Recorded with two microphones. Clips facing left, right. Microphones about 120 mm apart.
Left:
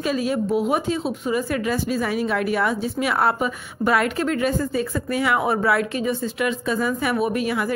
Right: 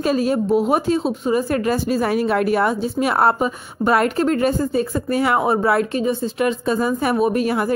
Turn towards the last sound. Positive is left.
turn(degrees=-40)  # may be behind; listen again after turning